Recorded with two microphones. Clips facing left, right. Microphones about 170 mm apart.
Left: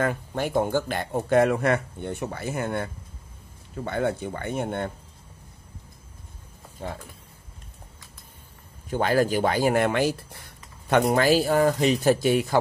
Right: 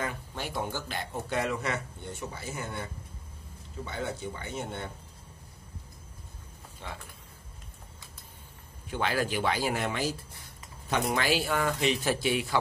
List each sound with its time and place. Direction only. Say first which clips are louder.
0.0 s speech: left 9 dB; 55° left (ahead or behind)
6.8 s speech: left 8 dB; 40° left (ahead or behind)
8.9 s speech: left 8 dB; 45° left (ahead or behind); by 10.4 s 65° left (ahead or behind)
11.1 s speech: left 8 dB; 40° left (ahead or behind)